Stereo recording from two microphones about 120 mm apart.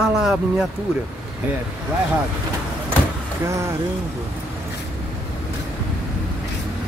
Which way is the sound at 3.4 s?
25° right (ahead or behind).